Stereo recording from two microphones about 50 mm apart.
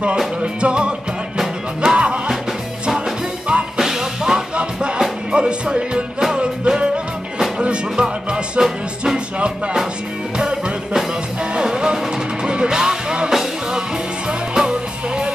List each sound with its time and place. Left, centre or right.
0.4 s music: right
3.7 s music: centre